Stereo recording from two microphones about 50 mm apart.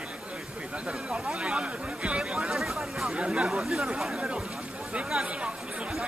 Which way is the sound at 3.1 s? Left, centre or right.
Right.